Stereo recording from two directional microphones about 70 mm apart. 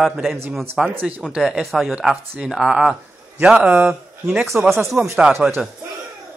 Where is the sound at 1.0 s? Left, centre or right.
Centre.